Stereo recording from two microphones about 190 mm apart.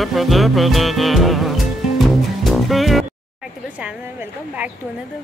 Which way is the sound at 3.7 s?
10° right (ahead or behind).